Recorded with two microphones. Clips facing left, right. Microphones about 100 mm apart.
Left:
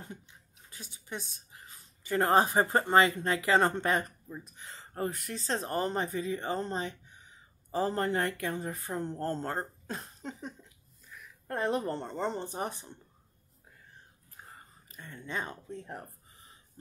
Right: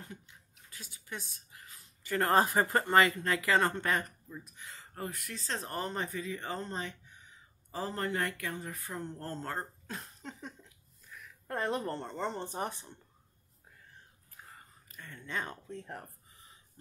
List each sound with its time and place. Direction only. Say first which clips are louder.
0.0 s speech: left 2 dB; 25° left (ahead or behind)
10.4 s a sound: left 4 dB; 5° left (ahead or behind)
11.5 s speech: left 3 dB; 15° left (ahead or behind)
14.9 s speech: left 2 dB; 20° left (ahead or behind)